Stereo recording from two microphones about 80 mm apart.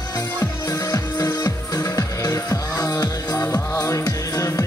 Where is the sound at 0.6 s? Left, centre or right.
Left.